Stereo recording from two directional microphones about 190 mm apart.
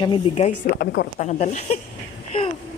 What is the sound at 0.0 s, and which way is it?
Speech, 30° left (ahead or behind).